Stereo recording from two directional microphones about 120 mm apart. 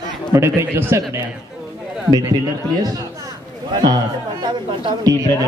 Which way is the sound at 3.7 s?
35° right (ahead or behind).